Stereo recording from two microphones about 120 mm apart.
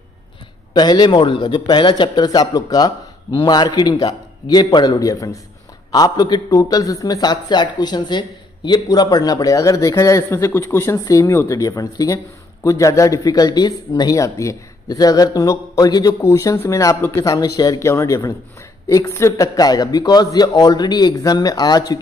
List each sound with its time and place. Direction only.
0.7 s a man's voice: 35° left (ahead or behind)